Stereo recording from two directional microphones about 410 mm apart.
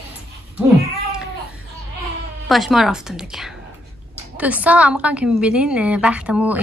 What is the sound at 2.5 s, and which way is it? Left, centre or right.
A woman's voice, centre.